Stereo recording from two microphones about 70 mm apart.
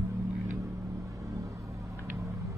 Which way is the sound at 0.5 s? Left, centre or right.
Right.